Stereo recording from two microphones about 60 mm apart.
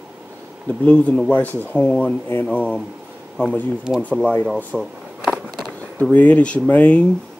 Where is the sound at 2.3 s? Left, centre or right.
Left.